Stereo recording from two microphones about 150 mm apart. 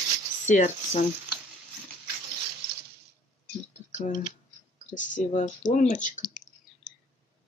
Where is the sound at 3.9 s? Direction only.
55° left (ahead or behind).